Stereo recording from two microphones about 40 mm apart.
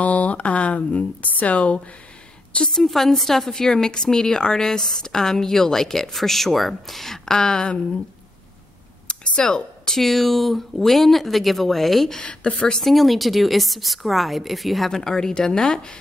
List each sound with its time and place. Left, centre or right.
0.0 s speech: left
2.7 s a woman's voice: centre; by 7.8 s left
9.0 s speech: left; by 12.2 s centre
12.2 s a woman's voice: left
12.8 s speech: centre
14.9 s a woman's voice: centre